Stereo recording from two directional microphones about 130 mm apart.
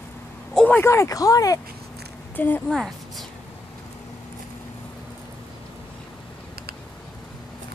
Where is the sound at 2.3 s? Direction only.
15° left (ahead or behind).